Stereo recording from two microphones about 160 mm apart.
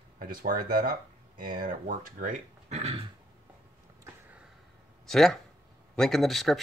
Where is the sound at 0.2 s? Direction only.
60° right (ahead or behind).